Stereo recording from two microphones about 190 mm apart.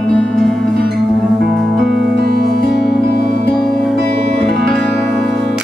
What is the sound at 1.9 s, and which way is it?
Music, 60° right (ahead or behind).